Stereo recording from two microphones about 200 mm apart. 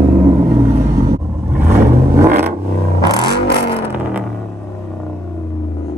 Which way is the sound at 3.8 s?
10° right (ahead or behind).